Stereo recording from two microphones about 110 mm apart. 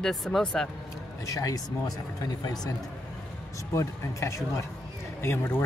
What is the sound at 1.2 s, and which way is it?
Speech, 30° left (ahead or behind).